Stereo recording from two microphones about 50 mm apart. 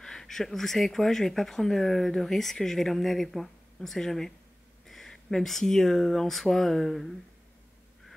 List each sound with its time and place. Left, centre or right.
0.0 s speech: centre